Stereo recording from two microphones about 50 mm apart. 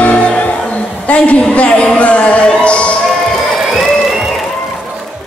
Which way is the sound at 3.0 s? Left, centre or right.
Centre.